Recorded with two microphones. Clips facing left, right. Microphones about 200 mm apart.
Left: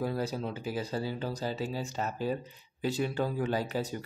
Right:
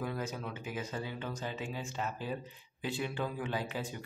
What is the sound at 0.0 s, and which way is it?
Speech, 35° left (ahead or behind).